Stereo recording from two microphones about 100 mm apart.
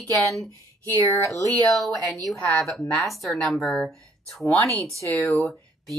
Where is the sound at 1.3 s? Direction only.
35° right (ahead or behind).